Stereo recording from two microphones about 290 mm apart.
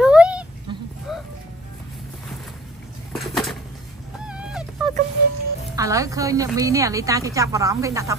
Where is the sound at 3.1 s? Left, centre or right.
Centre.